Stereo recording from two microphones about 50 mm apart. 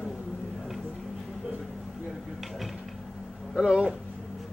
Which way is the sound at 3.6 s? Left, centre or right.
Centre.